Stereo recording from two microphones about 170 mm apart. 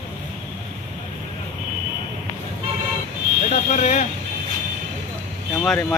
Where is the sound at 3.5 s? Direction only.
45° left (ahead or behind).